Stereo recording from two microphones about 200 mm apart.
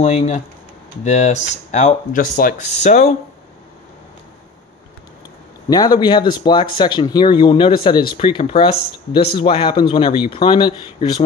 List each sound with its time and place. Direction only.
0.0 s speech: 35° left (ahead or behind)
5.7 s speech: 20° left (ahead or behind)